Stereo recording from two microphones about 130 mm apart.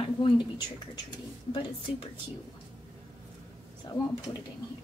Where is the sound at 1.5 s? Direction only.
40° left (ahead or behind).